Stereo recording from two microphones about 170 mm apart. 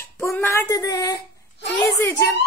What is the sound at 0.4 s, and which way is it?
A woman's voice, 15° left (ahead or behind).